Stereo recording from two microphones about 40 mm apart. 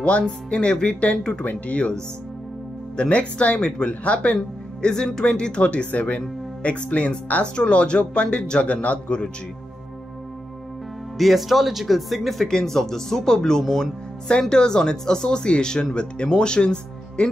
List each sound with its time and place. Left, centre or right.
0.0 s speech: left
3.0 s speech: left
4.8 s speech: centre; by 7.4 s left
7.5 s speech: left
11.1 s speech: centre
12.4 s speech: centre